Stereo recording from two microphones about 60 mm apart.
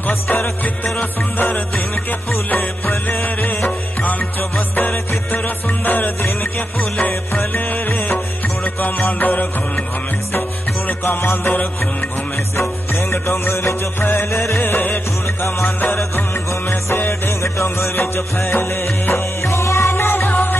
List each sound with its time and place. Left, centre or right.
0.3 s music: left
2.5 s music: left
8.8 s music: left
11.1 s music: left
13.1 s music: left
17.4 s music: left